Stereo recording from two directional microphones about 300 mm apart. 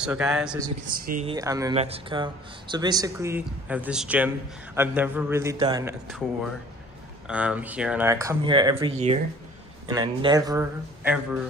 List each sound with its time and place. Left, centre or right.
0.0 s speech: centre
0.9 s speech: right
1.3 s speech: centre
6.0 s speech: centre